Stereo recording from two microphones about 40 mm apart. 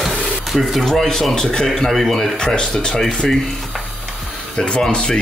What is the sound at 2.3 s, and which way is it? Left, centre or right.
Speech, left.